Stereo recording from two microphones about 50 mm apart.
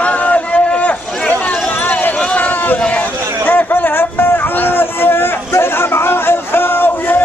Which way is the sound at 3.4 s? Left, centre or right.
Left.